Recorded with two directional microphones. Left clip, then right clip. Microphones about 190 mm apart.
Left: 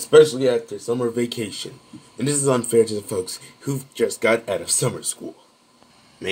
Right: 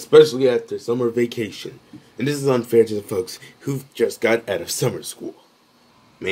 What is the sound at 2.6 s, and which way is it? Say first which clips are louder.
Speech: right 2 dB; 15° right (ahead or behind).